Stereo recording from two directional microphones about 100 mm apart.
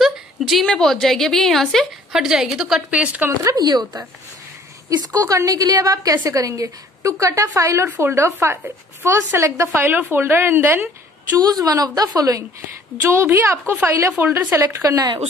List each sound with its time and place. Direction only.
0.0 s a woman's voice: centre (ahead or behind)
2.9 s speech: 15° right (ahead or behind)
3.3 s a woman's voice: 40° right (ahead or behind); by 11.3 s 20° right (ahead or behind)
11.3 s a woman's voice: 40° right (ahead or behind)